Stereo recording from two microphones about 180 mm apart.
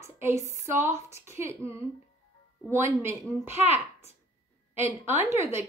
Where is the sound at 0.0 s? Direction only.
15° right (ahead or behind).